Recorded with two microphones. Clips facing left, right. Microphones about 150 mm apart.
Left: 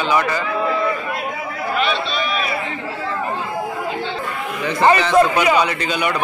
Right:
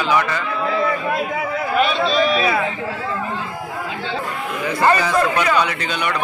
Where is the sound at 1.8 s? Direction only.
40° right (ahead or behind).